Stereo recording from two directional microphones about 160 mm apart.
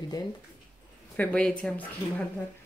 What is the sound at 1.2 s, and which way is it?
Speech, 10° left (ahead or behind).